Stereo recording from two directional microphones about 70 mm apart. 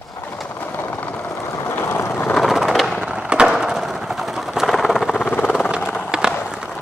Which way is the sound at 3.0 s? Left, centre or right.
Centre.